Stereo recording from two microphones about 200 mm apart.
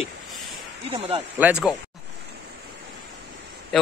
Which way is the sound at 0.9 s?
30° right (ahead or behind).